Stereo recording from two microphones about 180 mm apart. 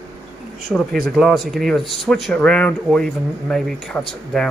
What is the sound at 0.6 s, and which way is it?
Speech, centre (ahead or behind).